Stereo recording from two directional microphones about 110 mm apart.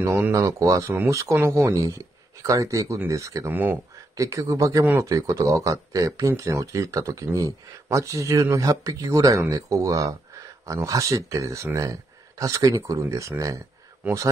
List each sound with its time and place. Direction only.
0.0 s speech: 25° right (ahead or behind)